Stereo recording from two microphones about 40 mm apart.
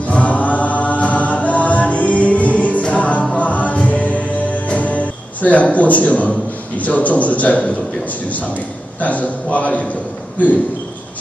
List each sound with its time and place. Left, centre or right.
0.0 s choir: left
2.8 s music: left
6.8 s a man's voice: left
9.0 s a man's voice: left